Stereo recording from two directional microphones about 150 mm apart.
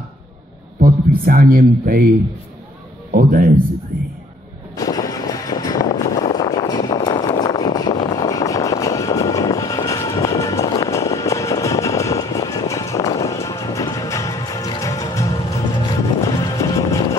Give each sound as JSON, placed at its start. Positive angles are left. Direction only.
{"t": 0.7, "sound": "speech", "side_deg": -75}
{"t": 3.1, "sound": "a man's voice", "side_deg": -90}
{"t": 4.7, "sound": "vehicle", "side_deg": 25}
{"t": 15.9, "sound": "music", "side_deg": 25}